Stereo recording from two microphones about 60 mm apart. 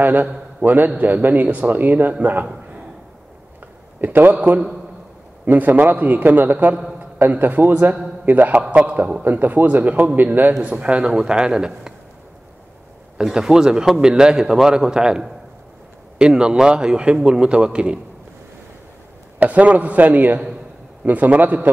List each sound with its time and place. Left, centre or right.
0.0 s a man's voice: right
4.0 s a man's voice: right
8.6 s a man's voice: centre
13.2 s a man's voice: centre
19.4 s speech: right